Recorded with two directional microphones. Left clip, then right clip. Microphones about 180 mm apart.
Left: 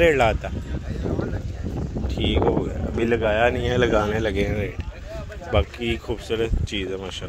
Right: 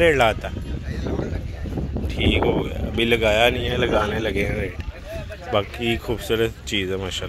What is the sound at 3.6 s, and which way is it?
A man's voice, 25° left (ahead or behind).